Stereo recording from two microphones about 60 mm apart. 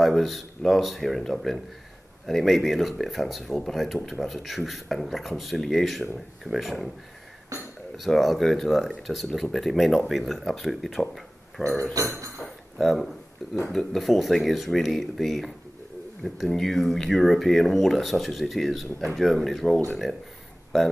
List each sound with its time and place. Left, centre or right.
0.0 s speech: centre
8.0 s speech: centre
11.9 s speech: right
12.7 s speech: centre